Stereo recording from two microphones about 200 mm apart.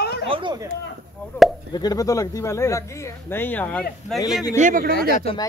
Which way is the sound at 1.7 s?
20° left (ahead or behind).